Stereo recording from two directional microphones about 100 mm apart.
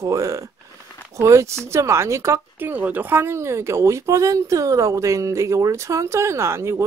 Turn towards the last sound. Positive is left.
turn(degrees=-25)  # may be behind; listen again after turning